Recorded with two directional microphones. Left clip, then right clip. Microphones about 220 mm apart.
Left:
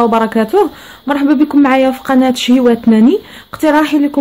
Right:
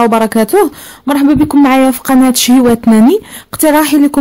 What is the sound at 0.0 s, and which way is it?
Speech, 40° right (ahead or behind).